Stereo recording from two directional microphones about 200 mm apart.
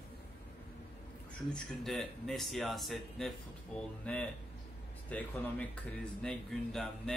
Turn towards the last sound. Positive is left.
turn(degrees=0)  # may be behind; listen again after turning